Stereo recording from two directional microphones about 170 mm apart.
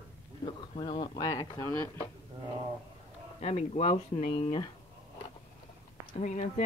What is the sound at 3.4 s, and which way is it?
Speech, 40° left (ahead or behind).